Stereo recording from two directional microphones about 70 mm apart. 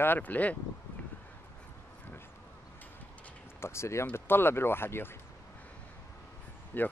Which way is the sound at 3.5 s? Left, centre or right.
Left.